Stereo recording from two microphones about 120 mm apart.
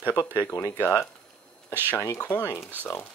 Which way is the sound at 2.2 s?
15° left (ahead or behind).